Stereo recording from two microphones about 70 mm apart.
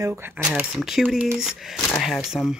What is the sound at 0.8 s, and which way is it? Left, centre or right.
Speech, centre.